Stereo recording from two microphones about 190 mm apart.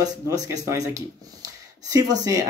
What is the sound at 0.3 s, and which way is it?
Speech, 15° right (ahead or behind).